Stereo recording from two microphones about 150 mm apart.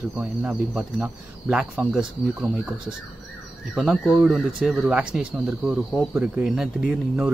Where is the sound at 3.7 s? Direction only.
Centre (ahead or behind).